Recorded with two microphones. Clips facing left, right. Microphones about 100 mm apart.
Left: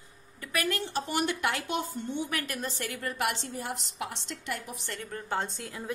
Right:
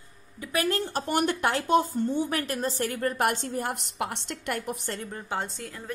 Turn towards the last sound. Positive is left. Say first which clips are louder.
# right 1 dB
turn(degrees=0)  # may be behind; listen again after turning